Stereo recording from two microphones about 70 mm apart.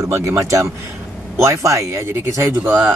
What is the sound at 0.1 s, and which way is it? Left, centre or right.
A man's voice, right.